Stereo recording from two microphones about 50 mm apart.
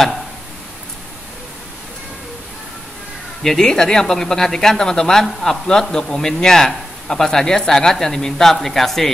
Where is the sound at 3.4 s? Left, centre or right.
Centre.